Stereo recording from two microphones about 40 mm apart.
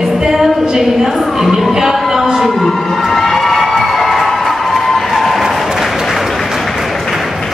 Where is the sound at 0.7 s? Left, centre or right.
Centre.